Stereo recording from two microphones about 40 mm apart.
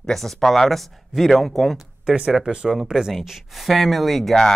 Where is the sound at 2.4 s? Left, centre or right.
Right; by 4.4 s centre.